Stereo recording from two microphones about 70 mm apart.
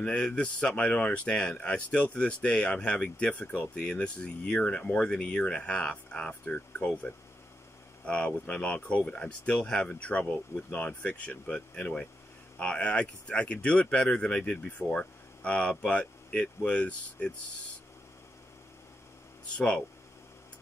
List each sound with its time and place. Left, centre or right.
0.0 s speech: centre
8.0 s speech: centre
19.5 s speech: centre